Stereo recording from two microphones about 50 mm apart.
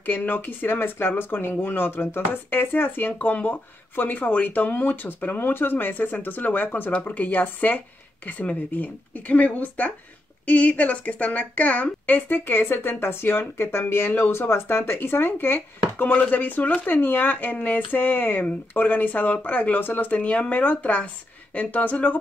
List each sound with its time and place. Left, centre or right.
0.0 s a woman's voice: left